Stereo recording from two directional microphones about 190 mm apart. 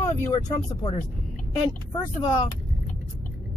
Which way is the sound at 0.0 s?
15° left (ahead or behind).